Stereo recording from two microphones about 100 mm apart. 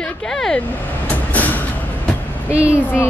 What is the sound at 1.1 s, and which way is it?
Vehicle, 15° left (ahead or behind).